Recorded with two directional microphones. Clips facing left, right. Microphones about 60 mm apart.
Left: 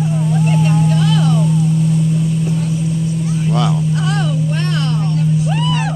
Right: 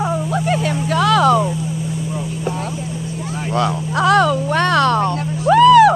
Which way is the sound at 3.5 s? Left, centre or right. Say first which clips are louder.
Even; right.